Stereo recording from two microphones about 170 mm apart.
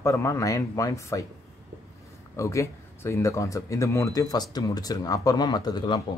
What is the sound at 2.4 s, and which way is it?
Speech, 15° left (ahead or behind).